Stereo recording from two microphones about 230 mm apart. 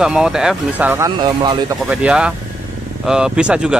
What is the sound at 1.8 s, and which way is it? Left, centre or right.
Speech, centre.